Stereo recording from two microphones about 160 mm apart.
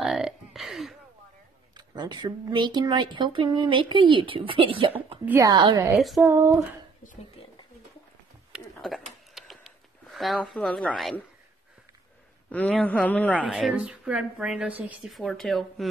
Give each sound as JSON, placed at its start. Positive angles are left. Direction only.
{"t": 0.0, "sound": "a sound", "side_deg": 0}
{"t": 2.0, "sound": "speech", "side_deg": -30}
{"t": 5.2, "sound": "speech", "side_deg": -15}
{"t": 5.9, "sound": "speech", "side_deg": 0}
{"t": 6.2, "sound": "speech", "side_deg": -15}
{"t": 9.3, "sound": "a sound", "side_deg": 0}
{"t": 12.4, "sound": "a man's voice", "side_deg": 5}
{"t": 13.5, "sound": "speech", "side_deg": -5}
{"t": 15.0, "sound": "speech", "side_deg": 0}